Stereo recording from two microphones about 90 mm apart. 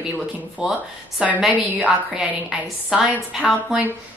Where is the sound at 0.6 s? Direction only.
10° right (ahead or behind).